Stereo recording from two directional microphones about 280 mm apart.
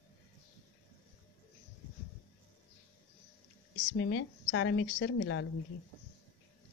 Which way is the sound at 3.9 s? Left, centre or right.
Left.